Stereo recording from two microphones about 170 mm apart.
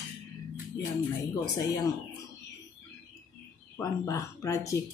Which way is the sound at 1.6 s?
25° left (ahead or behind).